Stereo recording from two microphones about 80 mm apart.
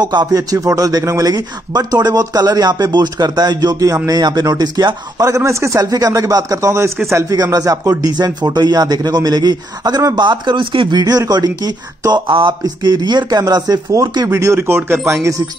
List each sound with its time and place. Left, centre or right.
0.0 s speech: right
0.3 s speech: right
4.2 s speech: right
5.2 s speech: right
7.3 s speech: right
8.0 s speech: right
12.1 s speech: right
12.6 s speech: right
14.2 s speech: right